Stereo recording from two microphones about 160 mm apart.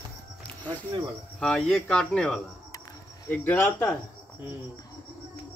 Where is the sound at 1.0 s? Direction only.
5° left (ahead or behind).